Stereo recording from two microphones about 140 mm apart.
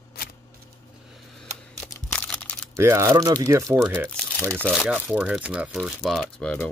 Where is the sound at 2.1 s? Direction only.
10° left (ahead or behind).